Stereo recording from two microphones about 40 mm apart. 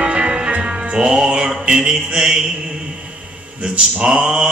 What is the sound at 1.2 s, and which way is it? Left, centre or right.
Mantra, centre.